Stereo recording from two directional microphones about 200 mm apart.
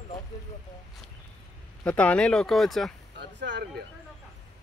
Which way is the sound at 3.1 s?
60° right (ahead or behind).